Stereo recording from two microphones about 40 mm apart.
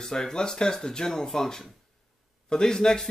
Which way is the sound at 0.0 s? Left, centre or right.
Centre.